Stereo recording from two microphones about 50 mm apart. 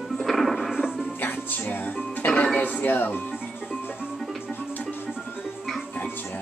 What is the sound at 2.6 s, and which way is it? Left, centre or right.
Speech, left.